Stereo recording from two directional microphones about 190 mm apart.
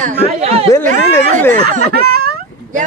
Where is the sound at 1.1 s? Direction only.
10° left (ahead or behind).